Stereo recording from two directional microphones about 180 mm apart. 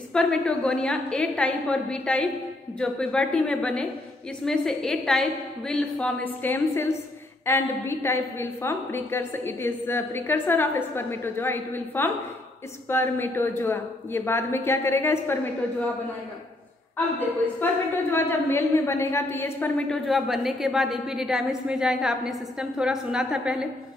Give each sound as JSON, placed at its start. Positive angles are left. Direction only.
{"t": 0.1, "sound": "a woman's voice", "side_deg": 5}
{"t": 17.6, "sound": "a woman's voice", "side_deg": 10}